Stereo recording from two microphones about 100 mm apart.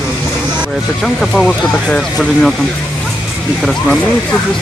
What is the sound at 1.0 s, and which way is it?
Speech, 5° left (ahead or behind).